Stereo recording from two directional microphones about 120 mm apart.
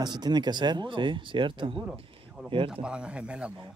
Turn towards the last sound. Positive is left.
turn(degrees=-10)  # may be behind; listen again after turning